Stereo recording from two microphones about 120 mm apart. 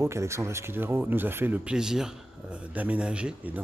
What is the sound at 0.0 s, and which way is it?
Speech, 25° right (ahead or behind).